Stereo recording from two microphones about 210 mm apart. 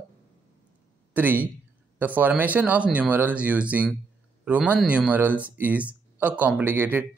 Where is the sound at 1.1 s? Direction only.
10° right (ahead or behind).